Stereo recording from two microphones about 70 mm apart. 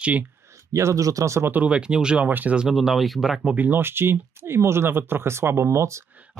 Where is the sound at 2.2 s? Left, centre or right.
Right.